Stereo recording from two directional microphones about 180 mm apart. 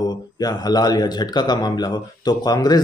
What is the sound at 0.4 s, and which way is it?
Speech, 20° left (ahead or behind).